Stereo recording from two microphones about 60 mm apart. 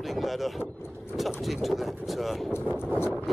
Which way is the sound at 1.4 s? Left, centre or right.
Centre.